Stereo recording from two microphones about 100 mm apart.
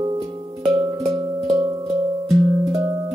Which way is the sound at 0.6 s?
55° right (ahead or behind).